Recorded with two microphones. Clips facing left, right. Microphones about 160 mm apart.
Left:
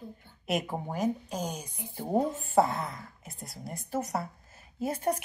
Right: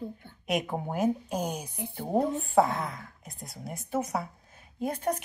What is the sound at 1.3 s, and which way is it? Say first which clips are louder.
Speech: right 3 dB; 60° right (ahead or behind).